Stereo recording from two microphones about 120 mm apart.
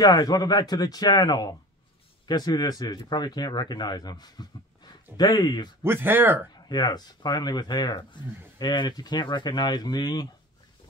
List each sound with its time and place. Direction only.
0.0 s a man's voice: 35° left (ahead or behind)
5.8 s speech: 15° right (ahead or behind)
6.7 s a man's voice: 35° left (ahead or behind)